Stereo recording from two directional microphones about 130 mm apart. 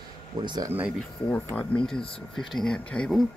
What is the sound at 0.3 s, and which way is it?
Speech, 30° right (ahead or behind).